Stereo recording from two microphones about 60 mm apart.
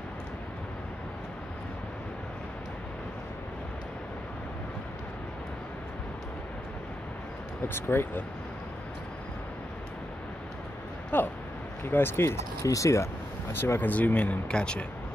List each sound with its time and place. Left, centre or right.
7.6 s speech: left
11.1 s speech: left
12.6 s speech: left; by 14.9 s centre